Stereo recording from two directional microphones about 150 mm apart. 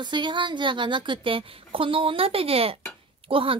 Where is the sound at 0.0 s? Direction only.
30° right (ahead or behind).